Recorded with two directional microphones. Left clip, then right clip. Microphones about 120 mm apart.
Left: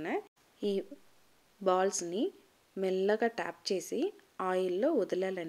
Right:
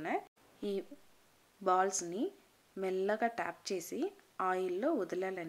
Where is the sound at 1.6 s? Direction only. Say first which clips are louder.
Left 2 dB; 25° left (ahead or behind).